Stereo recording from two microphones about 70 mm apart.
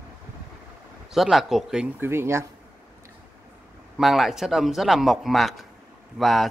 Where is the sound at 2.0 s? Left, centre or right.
Right.